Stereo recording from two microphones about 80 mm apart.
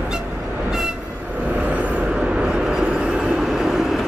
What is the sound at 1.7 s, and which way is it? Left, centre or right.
Vehicle, right.